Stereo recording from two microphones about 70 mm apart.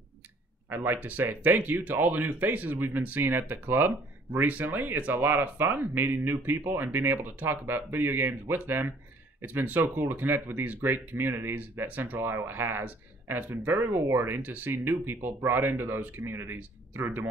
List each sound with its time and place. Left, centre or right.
0.7 s speech: right